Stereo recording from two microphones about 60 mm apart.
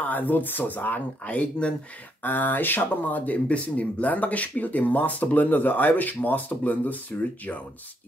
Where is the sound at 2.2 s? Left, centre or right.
Left.